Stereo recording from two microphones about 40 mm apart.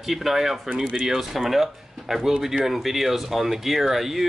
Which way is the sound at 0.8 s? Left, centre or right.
Centre.